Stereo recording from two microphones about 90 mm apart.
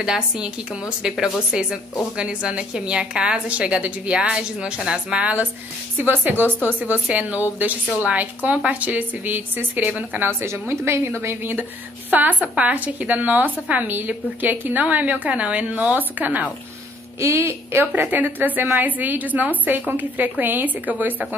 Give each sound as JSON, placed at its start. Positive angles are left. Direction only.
{"t": 0.0, "sound": "a woman's voice", "side_deg": -10}
{"t": 10.7, "sound": "a woman's voice", "side_deg": -30}
{"t": 17.2, "sound": "a woman's voice", "side_deg": -30}